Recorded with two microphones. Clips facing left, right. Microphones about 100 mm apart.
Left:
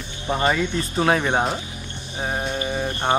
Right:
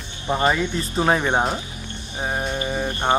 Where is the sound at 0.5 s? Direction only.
5° right (ahead or behind).